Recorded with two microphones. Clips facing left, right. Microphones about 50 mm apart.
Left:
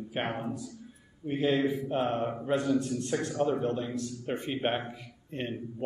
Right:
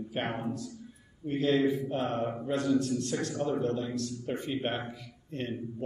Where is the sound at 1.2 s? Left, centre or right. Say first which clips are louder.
Right 1 dB; centre.